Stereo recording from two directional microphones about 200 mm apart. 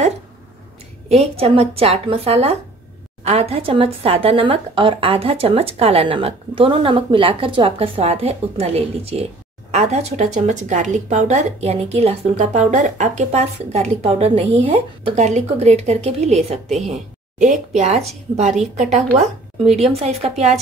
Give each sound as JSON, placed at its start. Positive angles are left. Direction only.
{"t": 1.0, "sound": "a woman's voice", "side_deg": -30}
{"t": 16.7, "sound": "speech", "side_deg": 0}
{"t": 17.4, "sound": "a woman's voice", "side_deg": -35}
{"t": 19.8, "sound": "a woman's voice", "side_deg": -30}